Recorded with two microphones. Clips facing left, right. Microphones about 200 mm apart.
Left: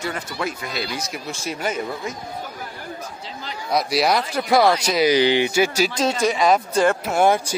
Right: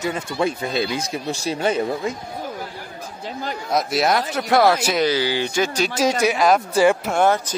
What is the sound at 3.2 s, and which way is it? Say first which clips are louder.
Speech: right 6 dB; 50° right (ahead or behind).